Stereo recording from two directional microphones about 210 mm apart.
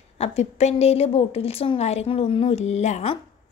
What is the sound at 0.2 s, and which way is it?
A woman's voice, 30° left (ahead or behind).